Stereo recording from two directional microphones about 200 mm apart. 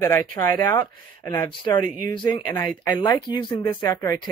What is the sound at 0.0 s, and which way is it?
Speech, 15° left (ahead or behind).